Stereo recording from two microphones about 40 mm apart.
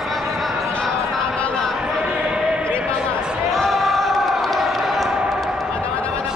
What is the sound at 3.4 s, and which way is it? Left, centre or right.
Basketball bounce, centre.